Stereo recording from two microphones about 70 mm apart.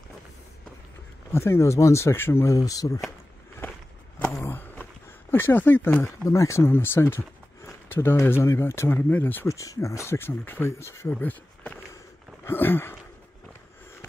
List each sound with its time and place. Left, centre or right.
1.3 s speech: left
2.1 s speech: left
2.5 s speech: left
4.2 s a sound: left
5.3 s speech: left
6.0 s speech: left
6.7 s speech: left
9.5 s speech: left
11.1 s speech: left